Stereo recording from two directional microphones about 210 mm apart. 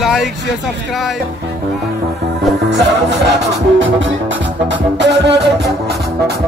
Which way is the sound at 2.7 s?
55° right (ahead or behind).